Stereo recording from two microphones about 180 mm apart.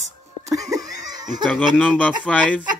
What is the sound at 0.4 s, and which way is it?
Laughter, 20° right (ahead or behind).